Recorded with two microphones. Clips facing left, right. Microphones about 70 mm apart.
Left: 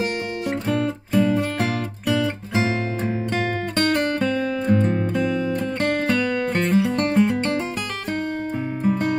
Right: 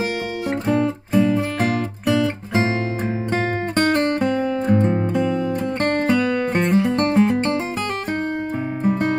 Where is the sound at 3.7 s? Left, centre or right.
Centre.